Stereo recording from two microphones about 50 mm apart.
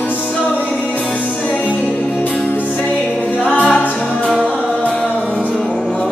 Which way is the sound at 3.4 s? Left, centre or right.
Left.